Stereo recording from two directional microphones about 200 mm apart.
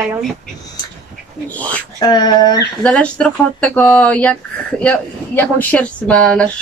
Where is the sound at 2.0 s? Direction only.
20° left (ahead or behind).